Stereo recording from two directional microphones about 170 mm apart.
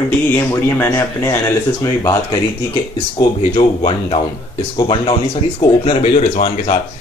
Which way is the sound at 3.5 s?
35° left (ahead or behind).